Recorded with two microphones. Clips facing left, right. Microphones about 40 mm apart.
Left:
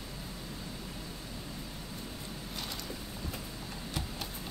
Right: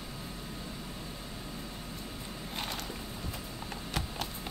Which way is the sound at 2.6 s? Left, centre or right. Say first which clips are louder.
Right 5 dB; right.